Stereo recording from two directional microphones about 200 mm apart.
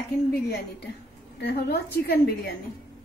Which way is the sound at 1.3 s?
55° left (ahead or behind).